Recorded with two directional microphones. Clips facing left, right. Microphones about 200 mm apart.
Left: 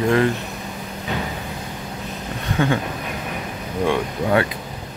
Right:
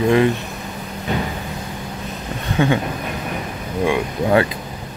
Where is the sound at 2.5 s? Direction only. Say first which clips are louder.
Right 3 dB; 20° right (ahead or behind).